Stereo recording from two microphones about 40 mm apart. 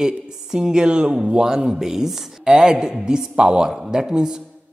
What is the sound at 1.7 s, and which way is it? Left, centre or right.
Speech, centre.